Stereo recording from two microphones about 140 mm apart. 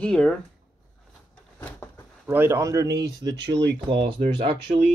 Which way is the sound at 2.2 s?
15° right (ahead or behind).